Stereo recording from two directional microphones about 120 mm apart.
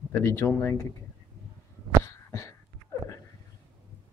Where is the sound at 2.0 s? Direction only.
25° left (ahead or behind).